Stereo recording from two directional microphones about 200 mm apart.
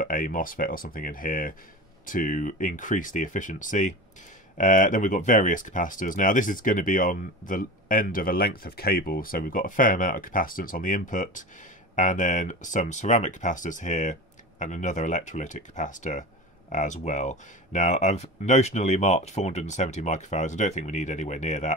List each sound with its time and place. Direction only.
0.0 s speech: 45° left (ahead or behind)